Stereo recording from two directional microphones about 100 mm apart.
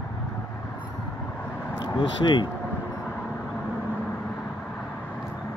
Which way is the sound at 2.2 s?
50° left (ahead or behind).